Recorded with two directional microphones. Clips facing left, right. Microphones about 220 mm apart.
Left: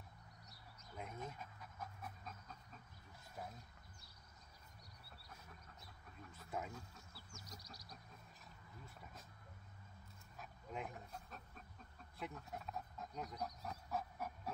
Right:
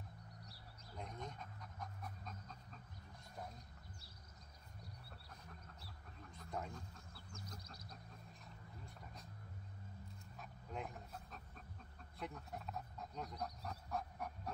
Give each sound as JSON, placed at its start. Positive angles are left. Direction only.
{"t": 0.9, "sound": "dog", "side_deg": 5}
{"t": 6.3, "sound": "duck", "side_deg": 5}
{"t": 7.3, "sound": "duck", "side_deg": -55}
{"t": 8.8, "sound": "a sound", "side_deg": 0}
{"t": 10.3, "sound": "dog", "side_deg": 0}
{"t": 12.2, "sound": "pig", "side_deg": 0}